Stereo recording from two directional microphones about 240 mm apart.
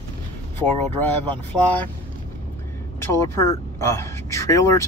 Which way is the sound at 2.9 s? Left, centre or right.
Centre.